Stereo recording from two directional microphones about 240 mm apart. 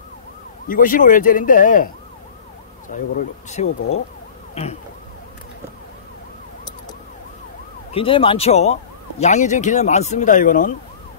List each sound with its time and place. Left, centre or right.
0.7 s speech: left
2.9 s speech: left
7.9 s speech: left